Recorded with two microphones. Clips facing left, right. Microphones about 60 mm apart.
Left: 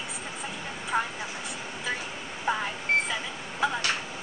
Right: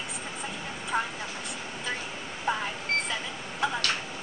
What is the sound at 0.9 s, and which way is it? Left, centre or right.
Vehicle, centre.